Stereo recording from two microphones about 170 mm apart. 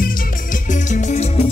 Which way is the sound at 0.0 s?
50° left (ahead or behind).